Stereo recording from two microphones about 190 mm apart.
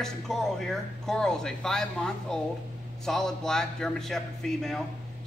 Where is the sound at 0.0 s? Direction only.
Centre (ahead or behind).